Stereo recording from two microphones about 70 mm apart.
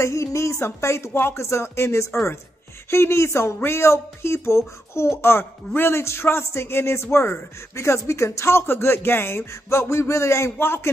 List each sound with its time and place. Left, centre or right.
0.0 s speech: left